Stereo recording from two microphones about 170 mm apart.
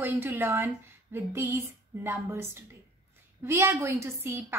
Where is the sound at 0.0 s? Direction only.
10° right (ahead or behind).